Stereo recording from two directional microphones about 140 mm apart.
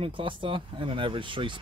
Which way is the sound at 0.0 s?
40° right (ahead or behind).